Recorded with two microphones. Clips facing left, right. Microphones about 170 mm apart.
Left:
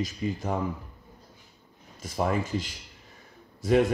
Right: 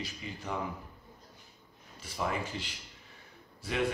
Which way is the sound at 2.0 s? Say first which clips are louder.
Left 7 dB; 45° left (ahead or behind).